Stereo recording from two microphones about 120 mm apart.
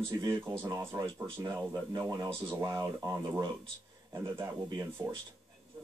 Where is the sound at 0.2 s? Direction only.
25° right (ahead or behind).